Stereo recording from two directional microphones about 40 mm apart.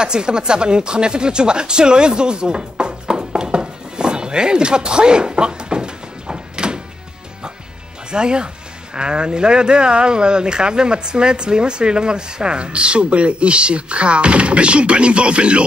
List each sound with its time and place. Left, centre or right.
0.0 s speech: right
8.1 s speech: right